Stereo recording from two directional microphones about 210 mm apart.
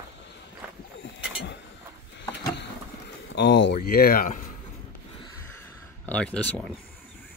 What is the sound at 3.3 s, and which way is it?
Speech, 55° left (ahead or behind).